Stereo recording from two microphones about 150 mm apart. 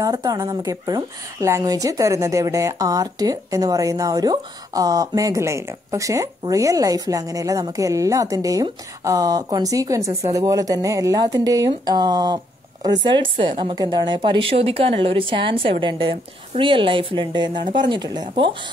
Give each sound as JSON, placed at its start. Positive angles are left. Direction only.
{"t": 0.0, "sound": "a woman's voice", "side_deg": -25}